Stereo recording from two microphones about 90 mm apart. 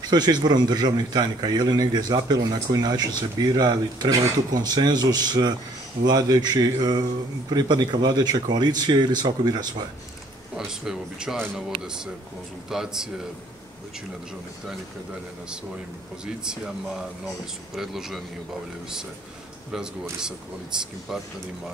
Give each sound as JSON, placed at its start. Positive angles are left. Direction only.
{"t": 0.1, "sound": "a man's voice", "side_deg": -50}
{"t": 10.5, "sound": "a man's voice", "side_deg": -5}
{"t": 16.4, "sound": "a man's voice", "side_deg": -5}
{"t": 19.7, "sound": "a man's voice", "side_deg": -10}